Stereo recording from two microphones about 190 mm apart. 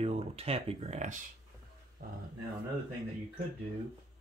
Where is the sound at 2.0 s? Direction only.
50° right (ahead or behind).